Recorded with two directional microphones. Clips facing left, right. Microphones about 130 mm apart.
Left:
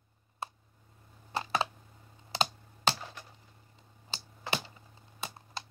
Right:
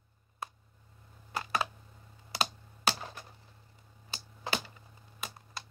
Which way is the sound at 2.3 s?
25° left (ahead or behind).